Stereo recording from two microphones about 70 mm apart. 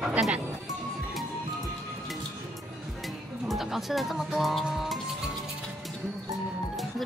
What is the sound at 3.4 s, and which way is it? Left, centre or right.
Speech, centre.